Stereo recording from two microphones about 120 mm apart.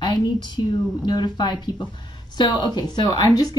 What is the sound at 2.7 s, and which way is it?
Speech, 35° left (ahead or behind).